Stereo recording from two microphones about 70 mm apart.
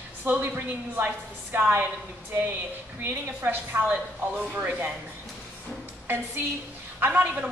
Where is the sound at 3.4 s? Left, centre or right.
Right.